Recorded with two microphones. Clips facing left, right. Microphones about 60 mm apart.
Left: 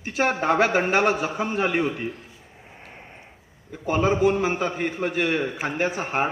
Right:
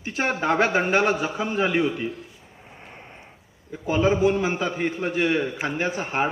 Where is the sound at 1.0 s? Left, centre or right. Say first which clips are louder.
Left 1 dB; left.